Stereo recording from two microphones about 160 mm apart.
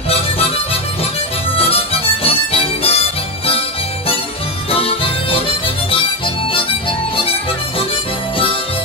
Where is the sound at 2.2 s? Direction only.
35° left (ahead or behind).